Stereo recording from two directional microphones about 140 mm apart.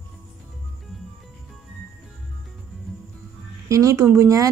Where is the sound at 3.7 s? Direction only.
25° right (ahead or behind).